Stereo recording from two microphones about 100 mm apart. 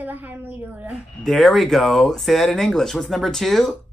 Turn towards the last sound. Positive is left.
turn(degrees=5)  # may be behind; listen again after turning